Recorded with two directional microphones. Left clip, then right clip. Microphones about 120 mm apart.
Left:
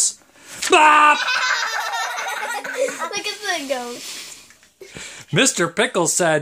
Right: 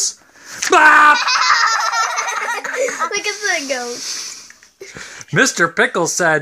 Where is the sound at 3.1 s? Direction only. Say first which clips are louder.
Right 5 dB; 45° right (ahead or behind).